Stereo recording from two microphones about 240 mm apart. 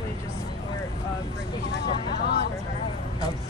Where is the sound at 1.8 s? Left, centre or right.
Left.